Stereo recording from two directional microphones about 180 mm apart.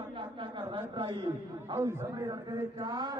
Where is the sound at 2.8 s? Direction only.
25° right (ahead or behind).